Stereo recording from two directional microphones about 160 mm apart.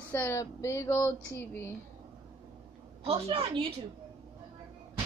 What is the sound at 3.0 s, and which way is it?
Speech, 40° right (ahead or behind).